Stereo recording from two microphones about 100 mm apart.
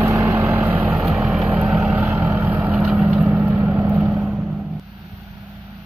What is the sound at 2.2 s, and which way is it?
Vehicle, 30° right (ahead or behind).